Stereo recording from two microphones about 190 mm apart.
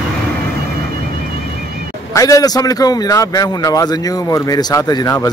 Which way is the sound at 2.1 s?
15° left (ahead or behind).